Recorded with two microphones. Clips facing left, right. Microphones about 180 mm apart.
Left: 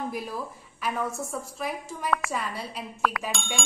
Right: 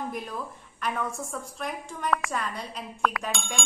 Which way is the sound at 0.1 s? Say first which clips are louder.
Left 1 dB; 5° left (ahead or behind).